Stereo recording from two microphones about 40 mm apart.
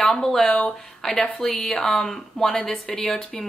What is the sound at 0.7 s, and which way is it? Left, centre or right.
A woman's voice, centre.